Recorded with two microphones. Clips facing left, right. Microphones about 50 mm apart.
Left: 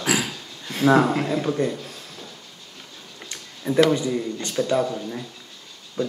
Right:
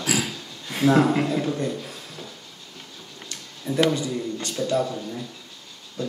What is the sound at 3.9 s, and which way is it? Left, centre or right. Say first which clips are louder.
Speech: left 3 dB; left.